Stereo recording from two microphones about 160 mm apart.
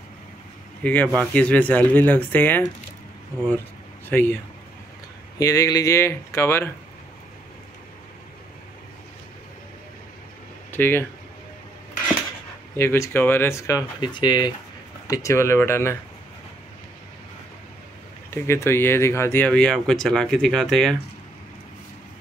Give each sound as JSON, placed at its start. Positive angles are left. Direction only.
{"t": 0.8, "sound": "speech", "side_deg": 10}
{"t": 4.1, "sound": "speech", "side_deg": 15}
{"t": 5.4, "sound": "speech", "side_deg": 20}
{"t": 10.7, "sound": "speech", "side_deg": 15}
{"t": 12.7, "sound": "speech", "side_deg": 15}
{"t": 18.3, "sound": "speech", "side_deg": 15}